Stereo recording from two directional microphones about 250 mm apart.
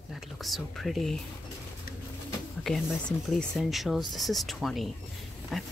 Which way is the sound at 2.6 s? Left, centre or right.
Centre.